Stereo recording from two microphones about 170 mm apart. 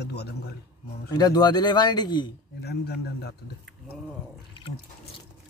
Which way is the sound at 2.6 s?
75° left (ahead or behind).